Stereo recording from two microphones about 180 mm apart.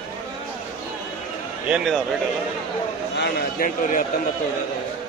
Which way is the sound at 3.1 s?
55° left (ahead or behind).